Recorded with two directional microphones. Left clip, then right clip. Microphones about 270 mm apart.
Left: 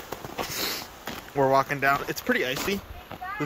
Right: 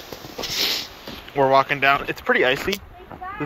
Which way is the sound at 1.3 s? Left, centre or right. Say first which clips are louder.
Right 5 dB; centre.